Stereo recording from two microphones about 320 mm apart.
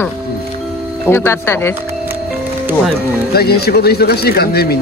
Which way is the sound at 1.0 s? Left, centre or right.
Centre.